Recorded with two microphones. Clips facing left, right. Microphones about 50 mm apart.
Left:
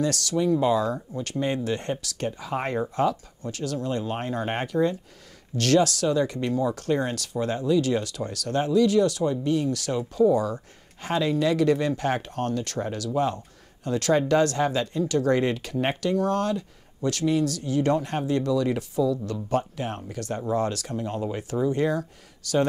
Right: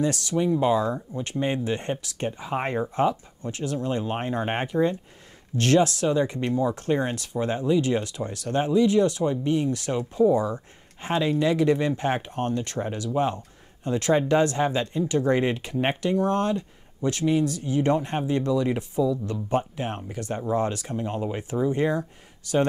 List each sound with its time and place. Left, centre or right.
0.0 s speech: right